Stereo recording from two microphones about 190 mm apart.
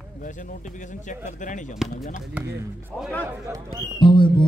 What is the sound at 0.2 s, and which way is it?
Speech, 45° left (ahead or behind).